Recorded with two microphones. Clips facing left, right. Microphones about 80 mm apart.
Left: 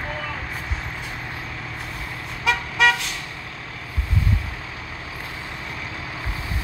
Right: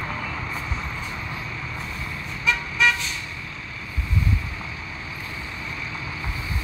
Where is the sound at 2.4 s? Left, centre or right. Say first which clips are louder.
Left 3 dB; left.